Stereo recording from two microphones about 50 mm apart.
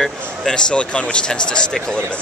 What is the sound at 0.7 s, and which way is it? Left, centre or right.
Speech, left.